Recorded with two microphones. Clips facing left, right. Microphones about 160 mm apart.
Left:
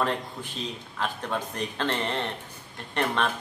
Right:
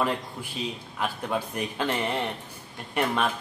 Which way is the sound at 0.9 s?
10° right (ahead or behind).